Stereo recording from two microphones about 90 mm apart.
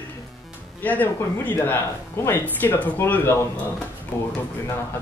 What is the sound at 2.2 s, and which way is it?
Speech, 20° left (ahead or behind).